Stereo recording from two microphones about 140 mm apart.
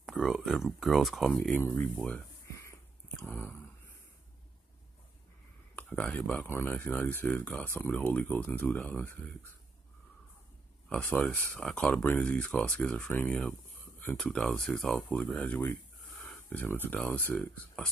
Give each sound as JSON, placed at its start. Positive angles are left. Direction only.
{"t": 0.0, "sound": "speech", "side_deg": -5}
{"t": 2.4, "sound": "a sound", "side_deg": 20}
{"t": 5.8, "sound": "speech", "side_deg": 10}
{"t": 10.9, "sound": "speech", "side_deg": 10}
{"t": 16.3, "sound": "a sound", "side_deg": 5}
{"t": 16.6, "sound": "speech", "side_deg": 15}